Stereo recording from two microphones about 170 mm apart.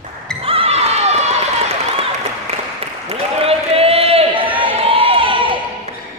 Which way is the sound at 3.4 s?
35° right (ahead or behind).